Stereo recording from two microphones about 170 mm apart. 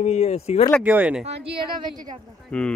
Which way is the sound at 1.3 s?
30° right (ahead or behind).